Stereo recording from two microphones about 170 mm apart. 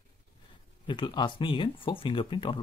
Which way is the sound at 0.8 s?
25° left (ahead or behind).